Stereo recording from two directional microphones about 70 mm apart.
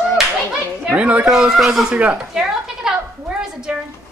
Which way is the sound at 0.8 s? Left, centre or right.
Centre.